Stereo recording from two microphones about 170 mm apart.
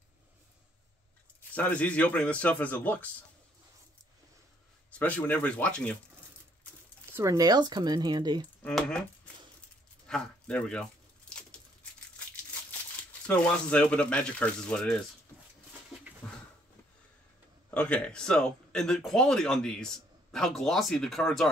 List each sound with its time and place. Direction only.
1.5 s speech: 10° left (ahead or behind)
4.9 s speech: 10° left (ahead or behind)
7.1 s speech: 15° right (ahead or behind)
8.6 s speech: 5° left (ahead or behind)
10.0 s a sound: 5° left (ahead or behind)
13.3 s speech: 5° left (ahead or behind)
16.2 s a sound: 5° left (ahead or behind)
17.6 s speech: 10° left (ahead or behind)